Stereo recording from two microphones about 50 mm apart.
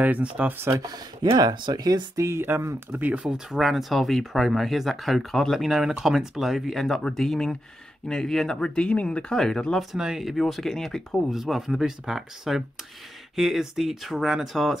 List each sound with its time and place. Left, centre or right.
0.0 s speech: right
0.5 s speech: right
2.1 s speech: right
3.0 s speech: right
3.3 s speech: centre; by 9.2 s left
9.3 s speech: centre
9.9 s speech: centre
10.2 s speech: centre
11.2 s speech: centre